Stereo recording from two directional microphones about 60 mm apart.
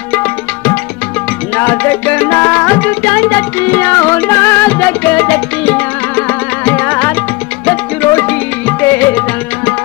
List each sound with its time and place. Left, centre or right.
1.5 s music: left
4.6 s music: left